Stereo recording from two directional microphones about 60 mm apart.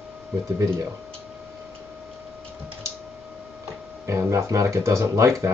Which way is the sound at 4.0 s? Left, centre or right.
Right.